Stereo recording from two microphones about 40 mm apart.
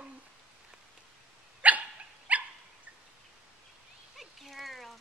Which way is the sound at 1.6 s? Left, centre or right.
Right.